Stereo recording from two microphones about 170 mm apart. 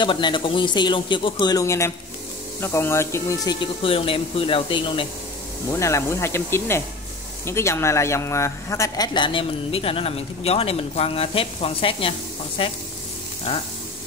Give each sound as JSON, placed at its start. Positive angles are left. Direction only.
{"t": 0.0, "sound": "speech", "side_deg": 30}
{"t": 3.8, "sound": "speech", "side_deg": 35}
{"t": 5.7, "sound": "speech", "side_deg": 15}